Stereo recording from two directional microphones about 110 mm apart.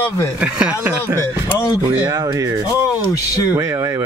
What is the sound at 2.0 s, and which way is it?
Rub, 30° right (ahead or behind).